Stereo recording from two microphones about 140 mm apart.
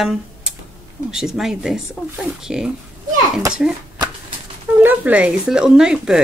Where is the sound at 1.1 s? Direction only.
5° right (ahead or behind).